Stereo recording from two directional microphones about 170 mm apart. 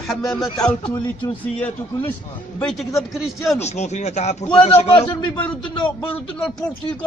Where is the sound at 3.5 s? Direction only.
40° left (ahead or behind).